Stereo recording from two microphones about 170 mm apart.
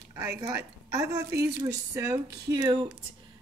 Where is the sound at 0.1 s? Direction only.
15° right (ahead or behind).